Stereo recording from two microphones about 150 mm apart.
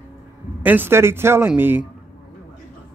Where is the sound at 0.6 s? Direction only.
15° right (ahead or behind).